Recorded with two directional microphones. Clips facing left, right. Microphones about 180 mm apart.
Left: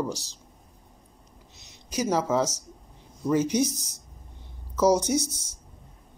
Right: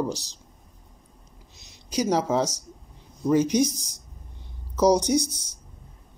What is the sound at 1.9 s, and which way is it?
Speech, 15° right (ahead or behind).